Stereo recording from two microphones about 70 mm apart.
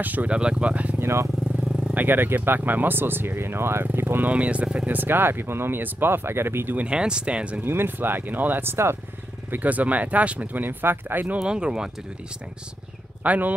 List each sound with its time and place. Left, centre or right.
0.0 s speech: right
0.9 s speech: right
1.6 s vehicle: centre
2.0 s speech: right
4.3 s speech: centre
6.8 s speech: centre
7.6 s speech: right
9.5 s speech: right
11.3 s speech: centre
13.2 s speech: right